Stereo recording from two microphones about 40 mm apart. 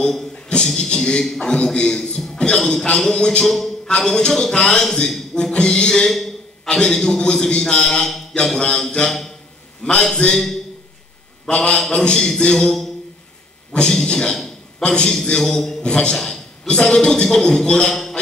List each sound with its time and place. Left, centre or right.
0.7 s a man's voice: centre
1.2 s a man's voice: centre
1.5 s a man's voice: left; by 3.7 s centre
3.8 s a man's voice: centre
11.4 s a man's voice: left; by 12.9 s centre
14.0 s a man's voice: left
15.4 s a man's voice: centre
15.8 s a man's voice: left